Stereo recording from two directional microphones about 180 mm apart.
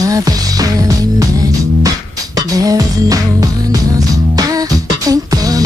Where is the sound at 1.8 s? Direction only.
20° right (ahead or behind).